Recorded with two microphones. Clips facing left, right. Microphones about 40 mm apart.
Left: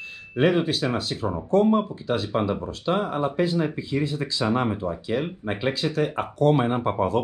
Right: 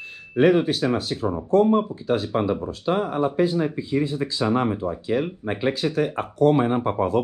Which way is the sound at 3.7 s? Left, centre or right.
Left.